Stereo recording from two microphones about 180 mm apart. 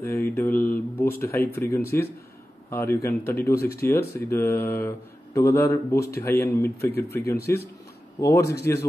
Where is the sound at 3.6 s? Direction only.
60° left (ahead or behind).